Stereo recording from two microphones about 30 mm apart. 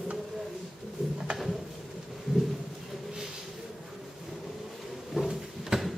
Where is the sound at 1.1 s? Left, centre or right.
Right.